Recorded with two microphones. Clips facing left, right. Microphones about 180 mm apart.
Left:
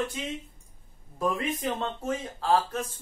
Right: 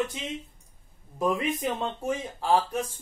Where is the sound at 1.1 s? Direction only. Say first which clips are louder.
Right 2 dB; 15° right (ahead or behind).